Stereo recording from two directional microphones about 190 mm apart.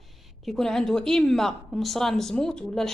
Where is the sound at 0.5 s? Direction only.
Centre (ahead or behind).